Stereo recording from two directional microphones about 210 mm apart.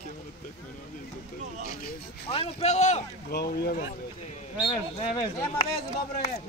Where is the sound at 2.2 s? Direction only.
30° left (ahead or behind).